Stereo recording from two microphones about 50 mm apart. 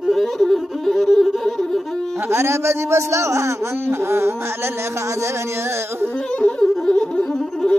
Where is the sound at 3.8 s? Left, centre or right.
Right.